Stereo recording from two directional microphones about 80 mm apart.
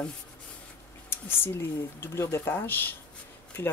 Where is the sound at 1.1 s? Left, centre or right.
Left.